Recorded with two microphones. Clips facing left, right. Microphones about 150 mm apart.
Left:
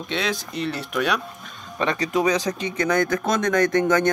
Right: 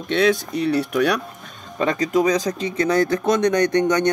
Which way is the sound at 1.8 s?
40° right (ahead or behind).